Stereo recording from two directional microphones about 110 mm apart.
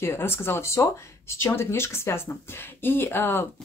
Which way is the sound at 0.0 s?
20° left (ahead or behind).